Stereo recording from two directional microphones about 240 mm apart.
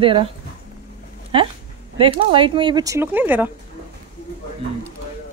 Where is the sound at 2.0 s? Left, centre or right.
Right.